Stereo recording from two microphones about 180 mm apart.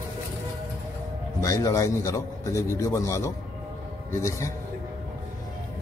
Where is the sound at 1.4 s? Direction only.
20° left (ahead or behind).